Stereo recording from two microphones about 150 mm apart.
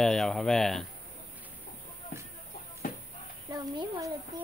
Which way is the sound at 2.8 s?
65° left (ahead or behind).